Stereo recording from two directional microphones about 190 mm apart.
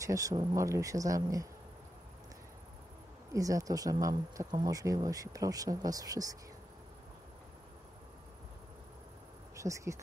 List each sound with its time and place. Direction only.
0.0 s speech: 15° right (ahead or behind)
3.3 s speech: 15° right (ahead or behind)
9.6 s speech: 15° right (ahead or behind)